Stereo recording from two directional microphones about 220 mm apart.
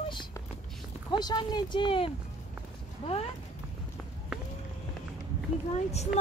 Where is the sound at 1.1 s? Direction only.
20° left (ahead or behind).